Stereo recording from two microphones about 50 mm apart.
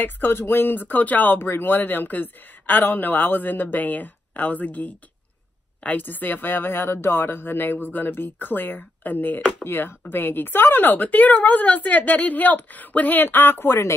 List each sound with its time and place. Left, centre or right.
0.0 s speech: left